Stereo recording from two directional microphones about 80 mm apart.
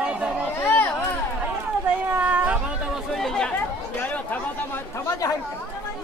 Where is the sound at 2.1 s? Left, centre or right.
Centre.